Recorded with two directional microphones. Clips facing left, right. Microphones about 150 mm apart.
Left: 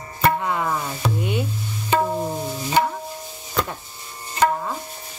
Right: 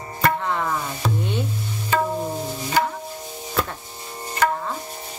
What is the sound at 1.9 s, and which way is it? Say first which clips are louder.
Music: left 2 dB; 20° left (ahead or behind).